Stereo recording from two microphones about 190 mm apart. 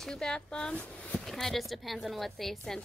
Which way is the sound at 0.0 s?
5° left (ahead or behind).